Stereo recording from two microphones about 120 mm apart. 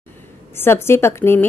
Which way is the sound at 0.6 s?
20° left (ahead or behind).